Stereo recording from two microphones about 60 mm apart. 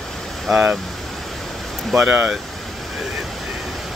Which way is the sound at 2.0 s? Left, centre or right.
Centre.